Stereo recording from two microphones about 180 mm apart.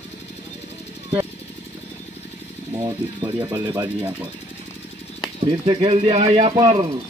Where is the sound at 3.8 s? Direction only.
10° right (ahead or behind).